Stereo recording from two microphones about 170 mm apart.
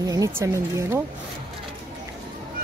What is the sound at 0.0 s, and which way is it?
Speech, 20° right (ahead or behind).